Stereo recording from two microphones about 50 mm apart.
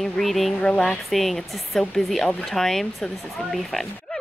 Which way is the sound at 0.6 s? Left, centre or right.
Left.